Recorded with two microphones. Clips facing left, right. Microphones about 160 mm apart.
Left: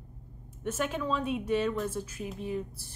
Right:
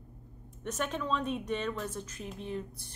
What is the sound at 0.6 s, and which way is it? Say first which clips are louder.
A woman's voice: left 3 dB; 5° left (ahead or behind).